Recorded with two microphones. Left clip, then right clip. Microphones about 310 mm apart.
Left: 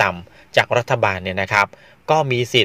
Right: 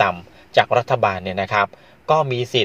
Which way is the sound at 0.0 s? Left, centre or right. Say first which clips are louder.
Even; left.